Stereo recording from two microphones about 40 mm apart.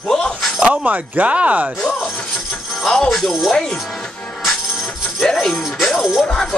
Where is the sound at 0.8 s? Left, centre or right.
Right.